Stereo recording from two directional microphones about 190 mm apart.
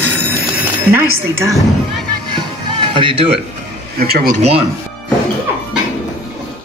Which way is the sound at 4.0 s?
50° right (ahead or behind).